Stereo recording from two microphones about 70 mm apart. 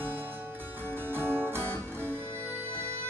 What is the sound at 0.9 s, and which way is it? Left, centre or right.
Music, right.